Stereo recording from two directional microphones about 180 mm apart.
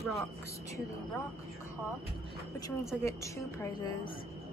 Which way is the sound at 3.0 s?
15° left (ahead or behind).